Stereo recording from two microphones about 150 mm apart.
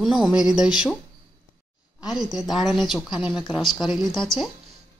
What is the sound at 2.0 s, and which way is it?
Speech, 5° right (ahead or behind).